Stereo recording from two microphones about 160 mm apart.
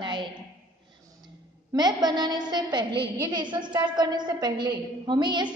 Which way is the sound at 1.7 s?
25° right (ahead or behind).